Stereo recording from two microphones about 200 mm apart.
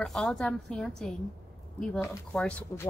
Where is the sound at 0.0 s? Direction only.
Centre (ahead or behind).